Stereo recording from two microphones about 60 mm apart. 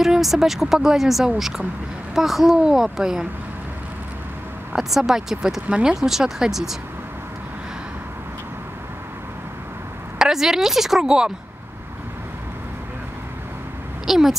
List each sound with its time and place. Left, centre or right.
0.0 s speech: centre
4.7 s a woman's voice: centre
5.7 s speech: centre
5.9 s speech: centre
10.1 s a woman's voice: centre
14.0 s speech: centre